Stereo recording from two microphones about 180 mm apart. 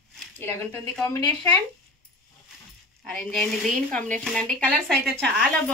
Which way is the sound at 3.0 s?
5° left (ahead or behind).